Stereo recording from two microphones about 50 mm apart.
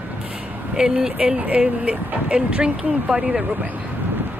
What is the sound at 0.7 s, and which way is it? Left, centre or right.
Speech, centre.